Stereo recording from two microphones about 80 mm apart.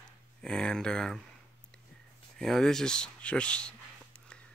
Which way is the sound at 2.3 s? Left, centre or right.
Centre.